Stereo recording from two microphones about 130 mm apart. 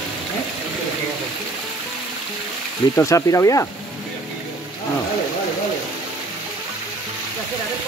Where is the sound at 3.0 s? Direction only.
25° left (ahead or behind).